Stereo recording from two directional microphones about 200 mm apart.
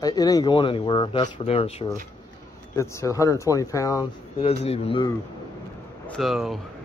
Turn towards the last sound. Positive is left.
turn(degrees=0)  # may be behind; listen again after turning